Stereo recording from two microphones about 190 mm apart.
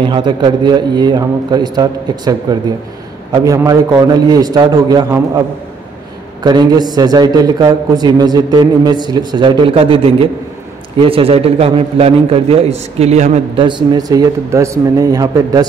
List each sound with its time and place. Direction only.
0.0 s a man's voice: 25° right (ahead or behind)
6.4 s a man's voice: 20° right (ahead or behind)
13.7 s a man's voice: 25° right (ahead or behind)